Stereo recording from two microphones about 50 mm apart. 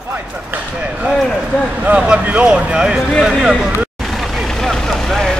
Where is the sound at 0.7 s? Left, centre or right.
Right.